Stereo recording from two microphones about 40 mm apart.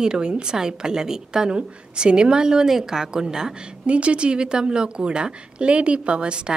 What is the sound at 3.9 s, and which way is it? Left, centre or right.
A woman's voice, right.